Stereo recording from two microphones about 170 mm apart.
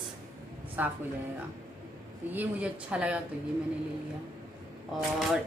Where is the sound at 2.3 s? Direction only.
10° right (ahead or behind).